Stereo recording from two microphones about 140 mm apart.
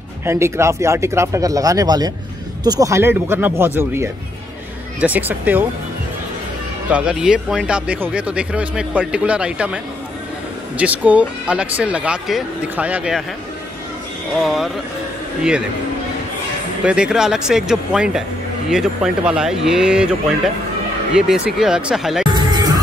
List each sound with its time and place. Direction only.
0.2 s speech: 20° right (ahead or behind)
6.9 s speech: 5° right (ahead or behind)
10.8 s speech: 10° right (ahead or behind)
14.4 s speech: centre (ahead or behind)
16.8 s speech: 5° right (ahead or behind)
22.3 s music: 30° right (ahead or behind)